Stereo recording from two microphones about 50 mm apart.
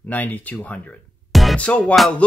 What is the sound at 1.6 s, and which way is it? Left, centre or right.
Music, left.